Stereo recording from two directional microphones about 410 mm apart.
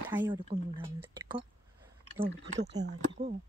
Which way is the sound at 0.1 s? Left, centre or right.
Centre.